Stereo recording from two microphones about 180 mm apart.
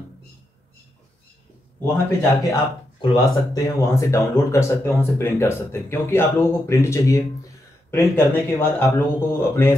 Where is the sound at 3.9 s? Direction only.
15° left (ahead or behind).